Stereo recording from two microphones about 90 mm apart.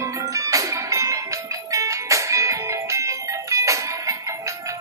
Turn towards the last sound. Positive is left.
turn(degrees=-35)  # may be behind; listen again after turning